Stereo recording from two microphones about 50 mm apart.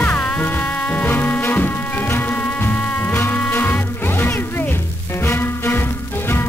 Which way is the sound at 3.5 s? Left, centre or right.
Left.